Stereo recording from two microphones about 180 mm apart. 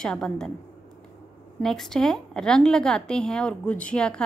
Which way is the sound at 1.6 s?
5° left (ahead or behind).